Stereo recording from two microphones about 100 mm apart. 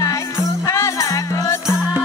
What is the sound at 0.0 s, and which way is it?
Music, 35° left (ahead or behind).